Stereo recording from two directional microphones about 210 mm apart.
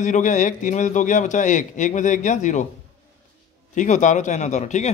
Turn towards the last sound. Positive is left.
turn(degrees=35)  # may be behind; listen again after turning